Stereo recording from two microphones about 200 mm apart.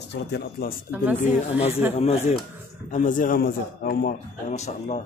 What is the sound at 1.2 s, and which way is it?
Speech, 35° left (ahead or behind).